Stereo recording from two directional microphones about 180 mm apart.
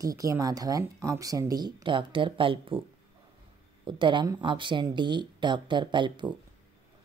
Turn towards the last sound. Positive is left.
turn(degrees=-25)  # may be behind; listen again after turning